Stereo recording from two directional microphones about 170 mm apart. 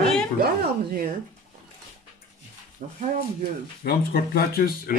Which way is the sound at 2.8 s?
50° right (ahead or behind).